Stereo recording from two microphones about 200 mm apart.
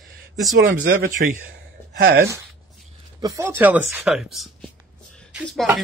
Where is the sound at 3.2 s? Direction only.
15° right (ahead or behind).